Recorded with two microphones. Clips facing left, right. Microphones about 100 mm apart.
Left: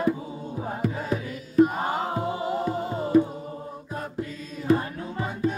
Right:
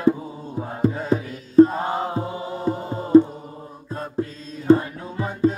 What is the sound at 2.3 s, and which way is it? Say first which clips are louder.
Music: left 3 dB; 30° left (ahead or behind).